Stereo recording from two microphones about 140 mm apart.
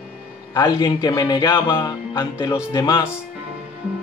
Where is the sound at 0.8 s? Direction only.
30° left (ahead or behind).